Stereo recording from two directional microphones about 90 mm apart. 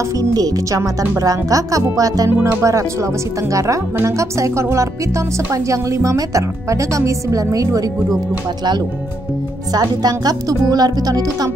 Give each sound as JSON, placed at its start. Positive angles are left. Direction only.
{"t": 0.2, "sound": "speech", "side_deg": -40}
{"t": 9.7, "sound": "speech", "side_deg": -45}